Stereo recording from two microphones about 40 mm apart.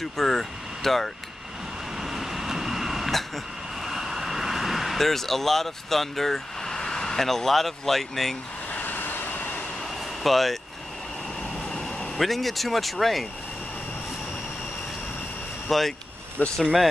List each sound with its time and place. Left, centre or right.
0.0 s speech: centre
2.0 s vehicle: centre
3.8 s speech: centre
8.7 s vehicle: left
10.2 s speech: centre
12.2 s speech: centre
15.7 s speech: centre
16.4 s speech: left